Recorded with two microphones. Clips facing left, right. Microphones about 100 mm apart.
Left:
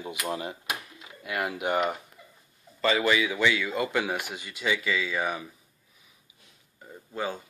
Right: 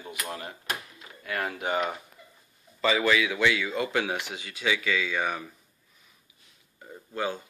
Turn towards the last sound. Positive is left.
turn(degrees=0)  # may be behind; listen again after turning